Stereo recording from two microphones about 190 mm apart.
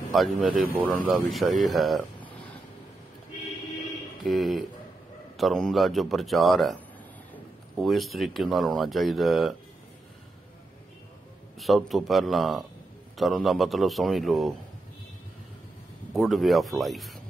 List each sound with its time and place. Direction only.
0.1 s speech: centre (ahead or behind)
0.5 s speech: 45° right (ahead or behind)
0.7 s speech: 5° right (ahead or behind)
4.2 s speech: centre (ahead or behind)
7.8 s speech: centre (ahead or behind)
11.6 s speech: centre (ahead or behind)
16.1 s speech: centre (ahead or behind)